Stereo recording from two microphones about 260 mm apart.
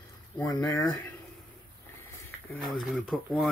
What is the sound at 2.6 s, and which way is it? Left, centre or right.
Speech, centre.